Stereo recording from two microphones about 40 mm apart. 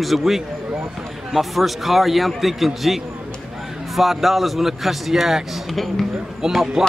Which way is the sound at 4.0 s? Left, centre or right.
Centre.